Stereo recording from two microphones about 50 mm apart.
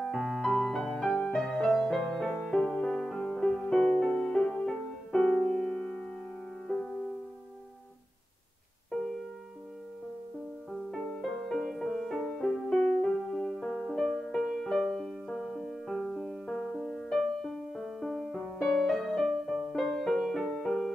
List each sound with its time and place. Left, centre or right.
0.1 s music: centre
0.4 s music: centre
5.8 s music: left
6.7 s music: centre
10.7 s music: centre
14.8 s music: centre